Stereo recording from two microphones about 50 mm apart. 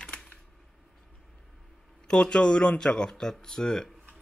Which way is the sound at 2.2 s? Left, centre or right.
Centre.